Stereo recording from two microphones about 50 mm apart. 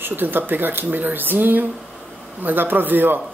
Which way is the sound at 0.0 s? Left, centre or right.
Right.